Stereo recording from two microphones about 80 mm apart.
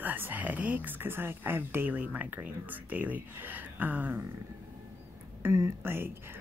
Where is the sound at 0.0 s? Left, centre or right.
Right.